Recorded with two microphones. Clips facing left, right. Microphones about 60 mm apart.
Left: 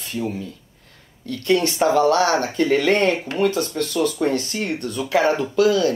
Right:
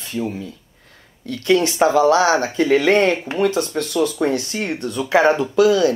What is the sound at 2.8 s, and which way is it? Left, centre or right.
Speech, right.